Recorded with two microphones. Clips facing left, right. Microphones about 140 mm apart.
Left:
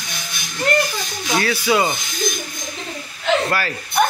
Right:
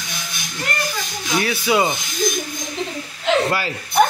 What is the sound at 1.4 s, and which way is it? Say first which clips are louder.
Speech: even; 20° right (ahead or behind).